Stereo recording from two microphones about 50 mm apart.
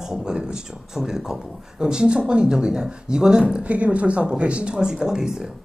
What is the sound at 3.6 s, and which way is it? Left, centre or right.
Speech, right.